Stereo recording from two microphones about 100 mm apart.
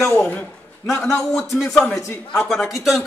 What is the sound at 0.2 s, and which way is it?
Speech, 10° left (ahead or behind).